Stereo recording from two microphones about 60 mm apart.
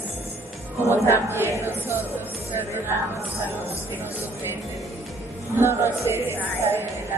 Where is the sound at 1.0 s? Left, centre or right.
Right.